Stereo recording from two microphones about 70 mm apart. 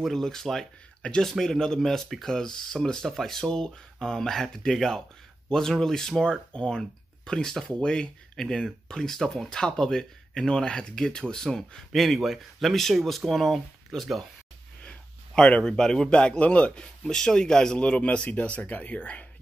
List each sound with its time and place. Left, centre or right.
0.0 s speech: centre
14.9 s a man's voice: centre
17.0 s speech: centre